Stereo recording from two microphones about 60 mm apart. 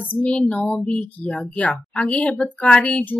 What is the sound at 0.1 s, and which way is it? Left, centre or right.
A woman's voice, left.